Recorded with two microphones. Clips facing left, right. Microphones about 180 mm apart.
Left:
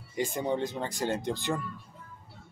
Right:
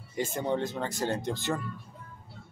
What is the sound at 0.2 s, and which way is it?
Speech, 15° left (ahead or behind).